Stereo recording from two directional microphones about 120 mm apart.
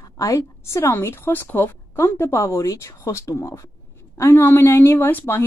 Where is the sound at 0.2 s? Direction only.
25° left (ahead or behind).